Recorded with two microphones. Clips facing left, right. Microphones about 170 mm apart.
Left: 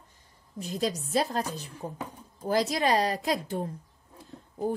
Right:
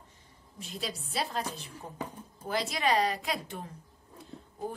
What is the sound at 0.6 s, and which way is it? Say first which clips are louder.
A woman's voice: left 9 dB; 40° left (ahead or behind).